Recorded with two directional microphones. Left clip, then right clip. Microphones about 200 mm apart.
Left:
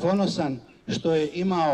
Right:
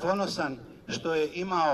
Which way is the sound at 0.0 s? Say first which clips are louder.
Left 3 dB; 20° left (ahead or behind).